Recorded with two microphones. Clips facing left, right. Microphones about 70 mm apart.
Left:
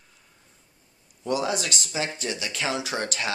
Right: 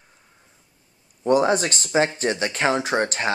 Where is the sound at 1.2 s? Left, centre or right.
Right.